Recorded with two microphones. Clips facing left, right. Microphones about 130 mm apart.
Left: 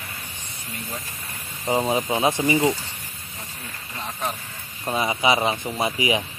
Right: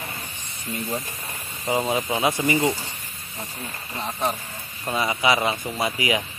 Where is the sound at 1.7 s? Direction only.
15° left (ahead or behind).